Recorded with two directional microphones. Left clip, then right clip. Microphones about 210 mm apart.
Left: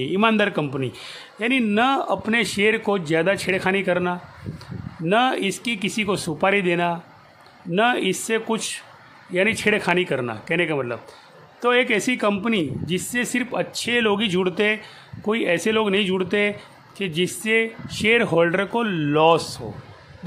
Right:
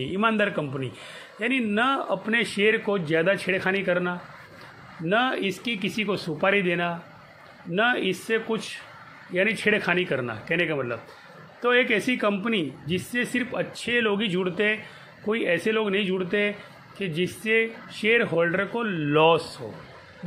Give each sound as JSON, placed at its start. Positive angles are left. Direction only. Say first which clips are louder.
{"t": 0.0, "sound": "a man's voice", "louder": "left 4 dB", "side_deg": 20}